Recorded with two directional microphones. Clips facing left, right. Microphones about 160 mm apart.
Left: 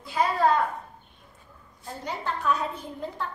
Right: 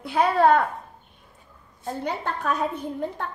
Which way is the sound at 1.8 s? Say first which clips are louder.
Right 4 dB; 55° right (ahead or behind).